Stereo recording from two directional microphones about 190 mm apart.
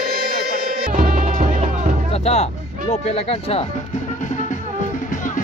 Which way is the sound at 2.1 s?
35° left (ahead or behind).